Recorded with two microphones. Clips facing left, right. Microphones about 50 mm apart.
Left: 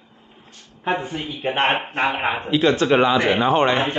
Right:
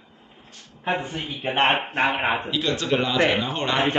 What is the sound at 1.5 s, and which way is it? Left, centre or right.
Speech, centre.